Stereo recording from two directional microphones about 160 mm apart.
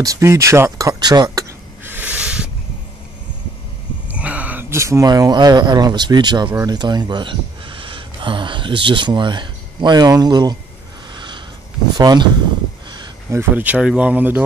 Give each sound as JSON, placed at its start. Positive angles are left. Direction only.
{"t": 0.0, "sound": "a sound", "side_deg": -20}
{"t": 4.1, "sound": "speech", "side_deg": -10}
{"t": 11.1, "sound": "sniff", "side_deg": -30}
{"t": 12.0, "sound": "speech", "side_deg": -25}